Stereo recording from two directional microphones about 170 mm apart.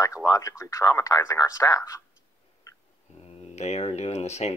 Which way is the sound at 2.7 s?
15° left (ahead or behind).